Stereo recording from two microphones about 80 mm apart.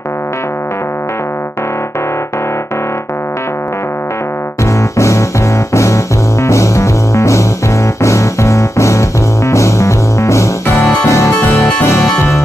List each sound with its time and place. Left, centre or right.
4.9 s music: left
6.4 s music: left
11.4 s music: centre
11.8 s music: left